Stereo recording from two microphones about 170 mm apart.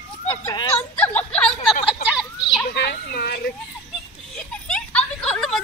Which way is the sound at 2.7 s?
70° left (ahead or behind).